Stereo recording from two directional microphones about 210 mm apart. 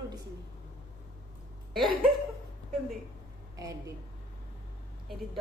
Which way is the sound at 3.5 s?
15° right (ahead or behind).